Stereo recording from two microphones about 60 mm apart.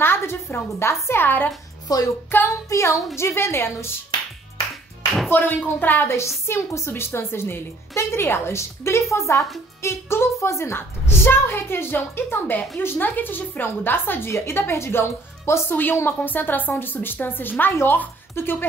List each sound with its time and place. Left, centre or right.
0.0 s music: left
1.2 s a woman's voice: left
1.9 s music: left
2.4 s a woman's voice: left
5.3 s a woman's voice: left
6.1 s a woman's voice: left
9.1 s speech: left
9.8 s a woman's voice: left
15.7 s a woman's voice: left